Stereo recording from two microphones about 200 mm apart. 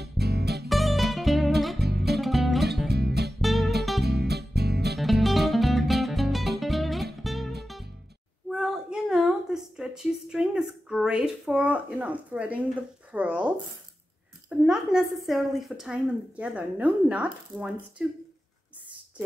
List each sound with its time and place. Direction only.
0.0 s music: 55° right (ahead or behind)
0.7 s music: centre (ahead or behind)
1.8 s music: 55° right (ahead or behind)
2.1 s music: centre (ahead or behind)
2.9 s music: 55° right (ahead or behind)
3.3 s music: centre (ahead or behind)
4.0 s music: 55° right (ahead or behind)
4.9 s music: centre (ahead or behind)
8.5 s a sound: 5° right (ahead or behind)
13.1 s speech: 10° right (ahead or behind)
14.6 s a woman's voice: 5° right (ahead or behind)